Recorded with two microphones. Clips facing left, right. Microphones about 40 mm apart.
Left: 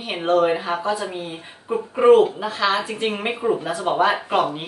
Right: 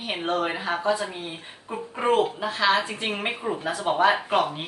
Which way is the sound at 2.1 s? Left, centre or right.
Centre.